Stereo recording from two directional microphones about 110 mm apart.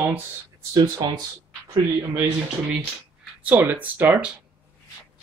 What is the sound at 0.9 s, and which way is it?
Speech, 40° right (ahead or behind).